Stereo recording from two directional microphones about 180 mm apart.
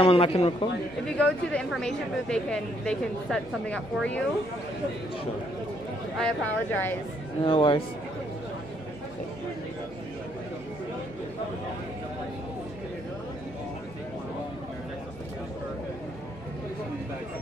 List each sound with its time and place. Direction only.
0.0 s a man's voice: 30° left (ahead or behind)
1.0 s a woman's voice: 5° left (ahead or behind)
6.1 s speech: 5° left (ahead or behind)
7.4 s speech: 25° left (ahead or behind)